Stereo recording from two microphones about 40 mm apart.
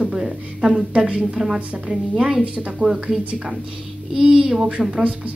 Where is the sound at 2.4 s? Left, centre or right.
Right.